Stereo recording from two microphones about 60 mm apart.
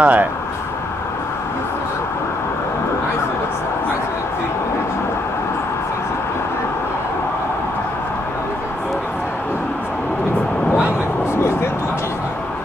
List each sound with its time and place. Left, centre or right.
0.0 s speech: right